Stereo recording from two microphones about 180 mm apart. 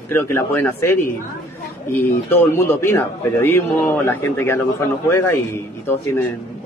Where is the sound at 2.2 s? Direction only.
15° left (ahead or behind).